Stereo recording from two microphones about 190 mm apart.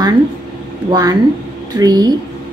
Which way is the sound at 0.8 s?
20° right (ahead or behind).